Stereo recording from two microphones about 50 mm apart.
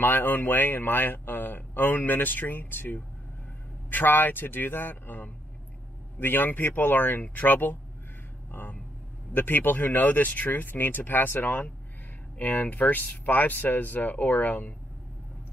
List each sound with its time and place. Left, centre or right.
0.0 s a man's voice: left